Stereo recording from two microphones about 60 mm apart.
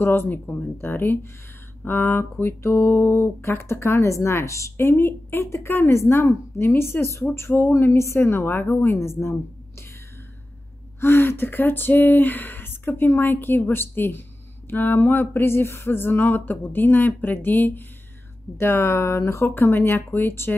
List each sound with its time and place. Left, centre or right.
0.0 s speech: left
1.9 s a sound: left
7.7 s speech: left
8.9 s a woman's voice: left
11.0 s speech: left
18.6 s a sound: left
19.4 s speech: left